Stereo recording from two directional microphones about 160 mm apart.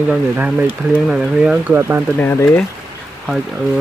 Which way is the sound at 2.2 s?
10° left (ahead or behind).